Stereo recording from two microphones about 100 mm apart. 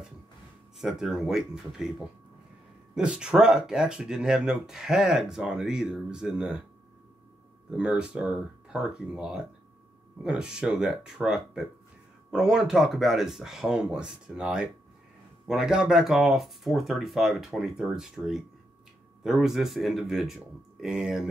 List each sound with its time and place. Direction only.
0.7 s speech: 5° right (ahead or behind)
2.9 s speech: 10° right (ahead or behind)
7.7 s speech: 5° right (ahead or behind)